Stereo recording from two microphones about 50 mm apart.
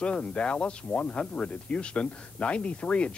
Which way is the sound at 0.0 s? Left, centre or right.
Left.